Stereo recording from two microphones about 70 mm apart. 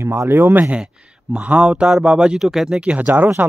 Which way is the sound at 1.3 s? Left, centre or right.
Centre.